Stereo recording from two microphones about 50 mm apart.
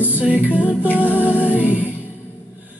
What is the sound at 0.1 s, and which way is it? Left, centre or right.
Music, right.